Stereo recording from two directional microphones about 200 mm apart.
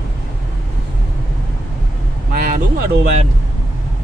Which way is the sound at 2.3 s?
45° right (ahead or behind).